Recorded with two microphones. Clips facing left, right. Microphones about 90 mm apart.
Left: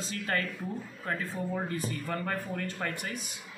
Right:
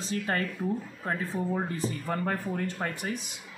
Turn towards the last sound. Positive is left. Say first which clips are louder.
# right 3 dB
turn(degrees=-20)  # may be behind; listen again after turning